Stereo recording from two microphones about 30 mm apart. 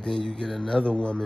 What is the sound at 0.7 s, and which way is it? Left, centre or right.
Speech, left.